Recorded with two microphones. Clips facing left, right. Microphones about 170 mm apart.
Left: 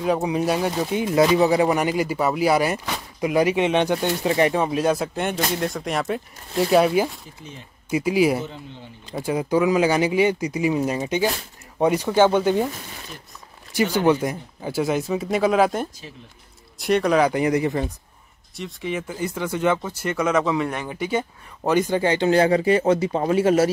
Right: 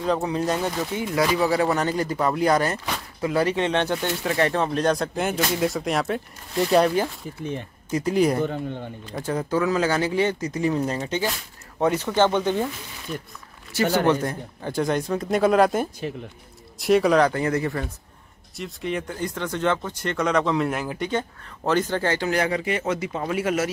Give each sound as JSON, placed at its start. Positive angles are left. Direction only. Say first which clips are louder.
{"t": 0.0, "sound": "speech", "louder": "left 2 dB", "side_deg": 10}
{"t": 8.5, "sound": "speech", "louder": "right 9 dB", "side_deg": -55}
{"t": 9.1, "sound": "speech", "louder": "left 3 dB", "side_deg": 10}
{"t": 13.9, "sound": "speech", "louder": "left 2 dB", "side_deg": 10}
{"t": 17.3, "sound": "speech", "louder": "left 3 dB", "side_deg": 15}
{"t": 18.6, "sound": "speech", "louder": "even", "side_deg": 0}